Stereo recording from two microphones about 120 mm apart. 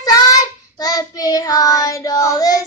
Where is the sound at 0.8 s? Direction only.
30° left (ahead or behind).